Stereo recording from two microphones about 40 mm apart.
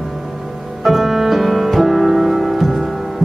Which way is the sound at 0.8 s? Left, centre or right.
Centre.